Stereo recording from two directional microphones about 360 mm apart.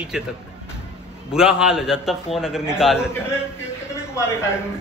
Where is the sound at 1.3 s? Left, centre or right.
Centre.